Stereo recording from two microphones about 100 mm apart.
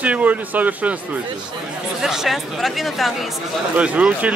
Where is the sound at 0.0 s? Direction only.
15° right (ahead or behind).